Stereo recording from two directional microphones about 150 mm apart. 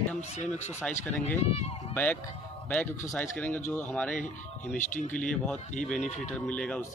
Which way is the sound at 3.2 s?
10° left (ahead or behind).